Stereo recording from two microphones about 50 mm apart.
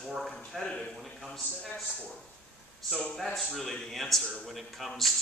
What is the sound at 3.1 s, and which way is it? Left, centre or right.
A man's voice, centre.